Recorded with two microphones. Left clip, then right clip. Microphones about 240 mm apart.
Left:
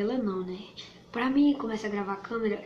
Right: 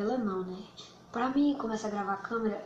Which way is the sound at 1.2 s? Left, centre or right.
Centre.